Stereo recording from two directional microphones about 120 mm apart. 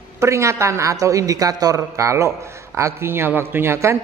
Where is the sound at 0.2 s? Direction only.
25° right (ahead or behind).